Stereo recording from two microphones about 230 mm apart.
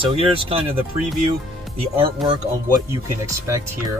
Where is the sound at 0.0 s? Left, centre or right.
Right.